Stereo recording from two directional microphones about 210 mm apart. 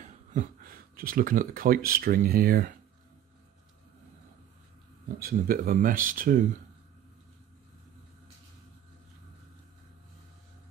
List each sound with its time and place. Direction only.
0.0 s a sound: 35° right (ahead or behind)
1.9 s speech: 45° right (ahead or behind)
5.2 s speech: 45° right (ahead or behind)